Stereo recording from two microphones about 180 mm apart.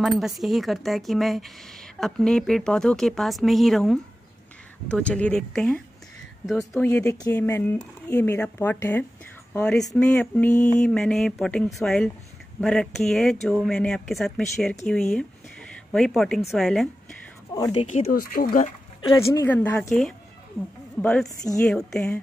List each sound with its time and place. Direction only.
0.2 s a woman's voice: centre (ahead or behind)
6.8 s a woman's voice: 10° left (ahead or behind)
10.5 s speech: 45° left (ahead or behind)
10.8 s a woman's voice: centre (ahead or behind)
17.6 s speech: 20° left (ahead or behind)
17.8 s speech: 45° left (ahead or behind)
18.9 s a woman's voice: 20° left (ahead or behind)
21.0 s a woman's voice: 5° left (ahead or behind)